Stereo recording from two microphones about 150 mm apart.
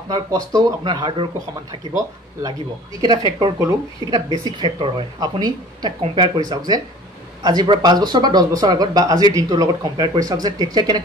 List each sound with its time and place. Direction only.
0.1 s speech: 25° right (ahead or behind)
3.0 s speech: 30° right (ahead or behind)